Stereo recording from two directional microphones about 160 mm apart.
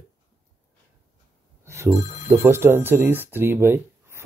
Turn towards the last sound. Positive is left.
turn(degrees=-15)  # may be behind; listen again after turning